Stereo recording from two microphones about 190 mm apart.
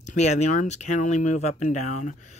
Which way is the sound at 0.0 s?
35° left (ahead or behind).